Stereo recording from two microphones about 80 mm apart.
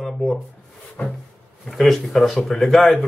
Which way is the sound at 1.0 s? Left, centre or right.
Left.